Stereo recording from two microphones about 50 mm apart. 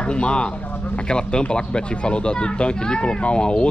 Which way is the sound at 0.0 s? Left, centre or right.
Centre.